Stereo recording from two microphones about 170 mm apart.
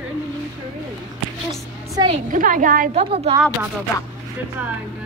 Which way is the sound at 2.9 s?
35° right (ahead or behind).